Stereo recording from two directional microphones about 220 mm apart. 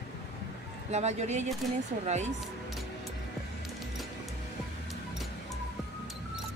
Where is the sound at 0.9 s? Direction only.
30° right (ahead or behind).